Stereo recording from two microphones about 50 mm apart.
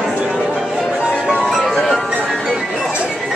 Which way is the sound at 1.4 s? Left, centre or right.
Centre.